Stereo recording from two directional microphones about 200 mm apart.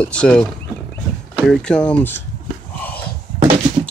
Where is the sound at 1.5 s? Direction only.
5° left (ahead or behind).